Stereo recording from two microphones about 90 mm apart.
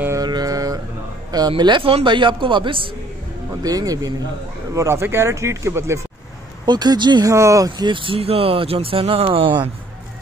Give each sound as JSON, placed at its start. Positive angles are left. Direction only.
{"t": 0.2, "sound": "mantra", "side_deg": -45}
{"t": 1.6, "sound": "speech", "side_deg": -70}
{"t": 3.6, "sound": "speech", "side_deg": -45}
{"t": 4.7, "sound": "speech", "side_deg": -30}
{"t": 6.6, "sound": "speech", "side_deg": -50}
{"t": 7.2, "sound": "speech", "side_deg": -35}